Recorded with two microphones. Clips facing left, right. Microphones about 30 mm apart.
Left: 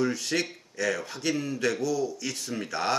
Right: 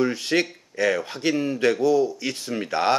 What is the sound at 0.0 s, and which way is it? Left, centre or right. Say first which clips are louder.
Speech: right 5 dB; right.